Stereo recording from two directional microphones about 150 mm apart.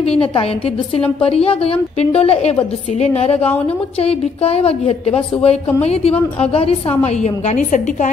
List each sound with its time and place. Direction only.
0.2 s a woman's voice: 35° left (ahead or behind); by 8.1 s 55° left (ahead or behind)